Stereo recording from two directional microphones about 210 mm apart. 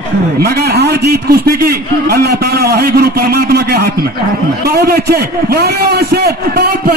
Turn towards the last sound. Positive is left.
turn(degrees=-50)  # may be behind; listen again after turning